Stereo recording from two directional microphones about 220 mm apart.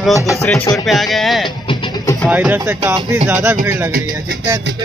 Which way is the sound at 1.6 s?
20° left (ahead or behind).